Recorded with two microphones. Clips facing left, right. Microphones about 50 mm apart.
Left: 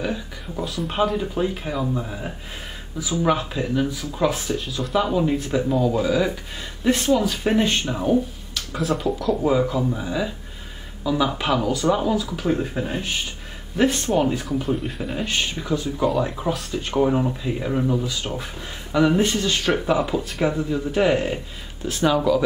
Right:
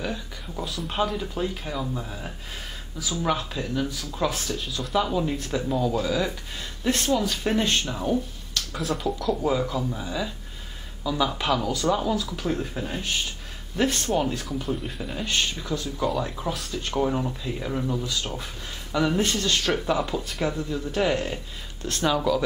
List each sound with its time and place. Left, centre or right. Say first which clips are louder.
0.0 s speech: left 4 dB; centre